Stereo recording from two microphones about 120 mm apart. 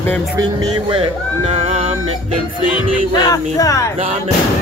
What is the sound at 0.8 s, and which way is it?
Speech, 50° right (ahead or behind).